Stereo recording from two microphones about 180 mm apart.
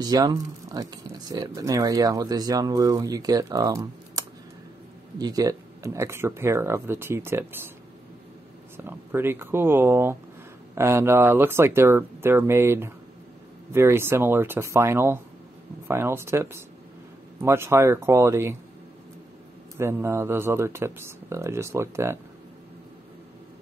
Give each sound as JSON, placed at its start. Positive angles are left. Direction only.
{"t": 0.0, "sound": "speech", "side_deg": -20}
{"t": 5.2, "sound": "speech", "side_deg": -20}
{"t": 8.7, "sound": "speech", "side_deg": -10}
{"t": 19.8, "sound": "speech", "side_deg": -15}